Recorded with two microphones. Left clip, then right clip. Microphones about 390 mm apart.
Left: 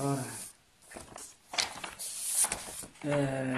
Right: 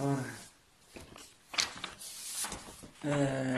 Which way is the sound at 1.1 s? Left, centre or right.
Centre.